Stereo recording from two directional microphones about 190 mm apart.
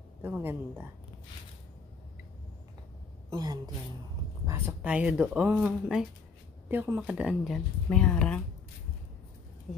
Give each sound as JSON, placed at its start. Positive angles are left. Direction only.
{"t": 0.2, "sound": "speech", "side_deg": -10}
{"t": 3.3, "sound": "a woman's voice", "side_deg": -20}
{"t": 4.5, "sound": "speech", "side_deg": -10}